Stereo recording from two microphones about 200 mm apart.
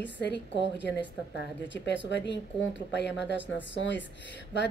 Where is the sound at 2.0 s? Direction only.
60° left (ahead or behind).